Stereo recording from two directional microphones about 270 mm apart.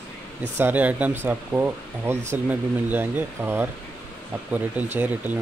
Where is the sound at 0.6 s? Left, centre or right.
Centre.